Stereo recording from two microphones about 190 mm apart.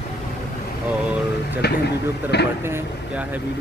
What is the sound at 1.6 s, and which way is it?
Speech, 60° left (ahead or behind).